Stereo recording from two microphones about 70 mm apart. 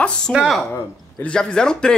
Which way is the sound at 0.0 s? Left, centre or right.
Centre.